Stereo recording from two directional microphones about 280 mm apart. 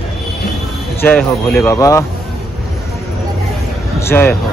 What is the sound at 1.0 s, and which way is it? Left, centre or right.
Speech, centre.